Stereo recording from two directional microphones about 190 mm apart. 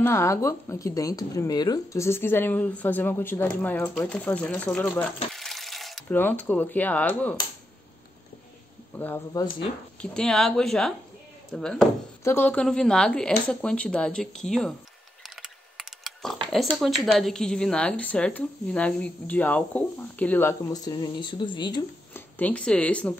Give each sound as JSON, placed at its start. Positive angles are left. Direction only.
{"t": 0.0, "sound": "speech", "side_deg": 15}
{"t": 5.3, "sound": "a sound", "side_deg": 0}
{"t": 6.0, "sound": "speech", "side_deg": 10}
{"t": 8.9, "sound": "speech", "side_deg": 10}
{"t": 10.1, "sound": "speech", "side_deg": 5}
{"t": 15.2, "sound": "typing", "side_deg": 0}
{"t": 16.5, "sound": "speech", "side_deg": 0}
{"t": 22.1, "sound": "speech", "side_deg": 10}